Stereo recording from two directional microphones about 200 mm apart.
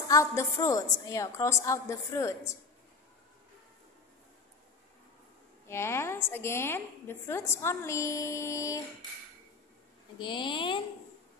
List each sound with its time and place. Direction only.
0.1 s a woman's voice: 15° left (ahead or behind)
5.7 s a woman's voice: 15° left (ahead or behind)
10.1 s speech: 25° left (ahead or behind)